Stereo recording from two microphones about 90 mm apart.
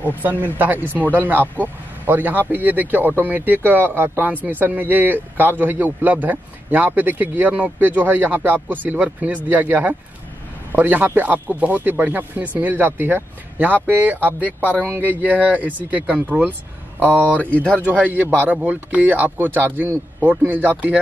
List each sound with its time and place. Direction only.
0.0 s speech: 20° right (ahead or behind)
17.2 s speech: 15° left (ahead or behind)
17.8 s speech: 20° right (ahead or behind)
18.2 s speech: 20° left (ahead or behind)
18.5 s speech: 15° right (ahead or behind)